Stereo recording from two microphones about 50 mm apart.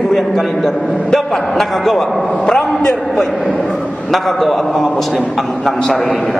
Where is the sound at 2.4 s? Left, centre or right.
Centre.